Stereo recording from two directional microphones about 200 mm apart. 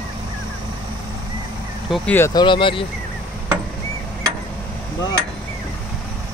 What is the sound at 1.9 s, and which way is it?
Speech, 10° left (ahead or behind).